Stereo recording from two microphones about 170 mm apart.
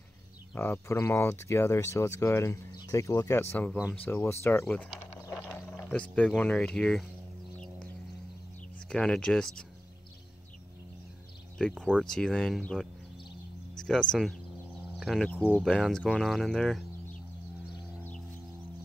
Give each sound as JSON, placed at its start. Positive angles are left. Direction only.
{"t": 0.6, "sound": "speech", "side_deg": 15}
{"t": 5.8, "sound": "speech", "side_deg": 5}
{"t": 8.8, "sound": "speech", "side_deg": 5}
{"t": 11.5, "sound": "speech", "side_deg": 5}